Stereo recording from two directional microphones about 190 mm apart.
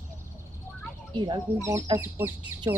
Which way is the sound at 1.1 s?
25° right (ahead or behind).